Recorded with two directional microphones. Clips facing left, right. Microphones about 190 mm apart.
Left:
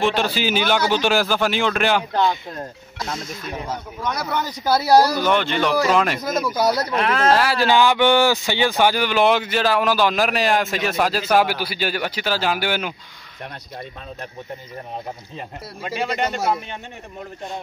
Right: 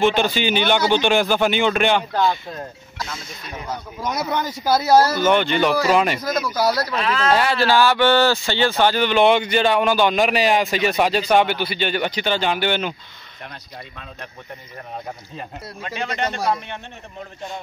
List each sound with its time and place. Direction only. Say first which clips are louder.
0.0 s speech: right 2 dB; centre (ahead or behind)
4.0 s speech: right 2 dB; 5° right (ahead or behind)
4.6 s speech: even; 10° left (ahead or behind)
5.2 s speech: right 2 dB; centre (ahead or behind)
6.5 s speech: even; 25° left (ahead or behind)
7.0 s speech: left 2 dB; 55° left (ahead or behind)
7.2 s speech: even; centre (ahead or behind)
7.5 s speech: even; 15° left (ahead or behind)
15.8 s speech: left 2 dB; 10° left (ahead or behind)